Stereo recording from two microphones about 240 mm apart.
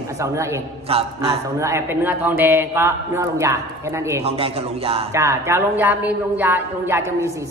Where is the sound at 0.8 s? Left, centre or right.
Right.